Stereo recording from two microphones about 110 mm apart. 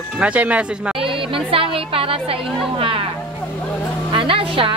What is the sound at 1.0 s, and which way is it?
Music, 55° right (ahead or behind).